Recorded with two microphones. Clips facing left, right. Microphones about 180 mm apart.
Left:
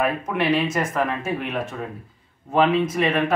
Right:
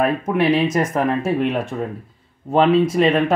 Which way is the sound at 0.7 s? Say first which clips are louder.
Right 5 dB; 40° right (ahead or behind).